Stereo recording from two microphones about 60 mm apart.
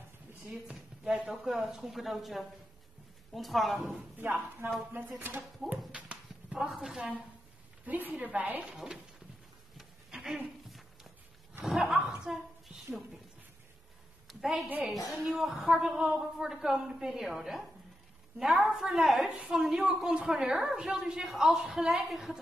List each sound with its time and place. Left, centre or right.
0.7 s speech: centre
4.2 s speech: right
5.9 s clip-clop: centre
6.7 s a woman's voice: centre
7.8 s a woman's voice: right
8.7 s a woman's voice: centre
9.8 s a sound: centre
11.6 s chuckle: centre
14.2 s a sound: centre
14.9 s a woman's voice: centre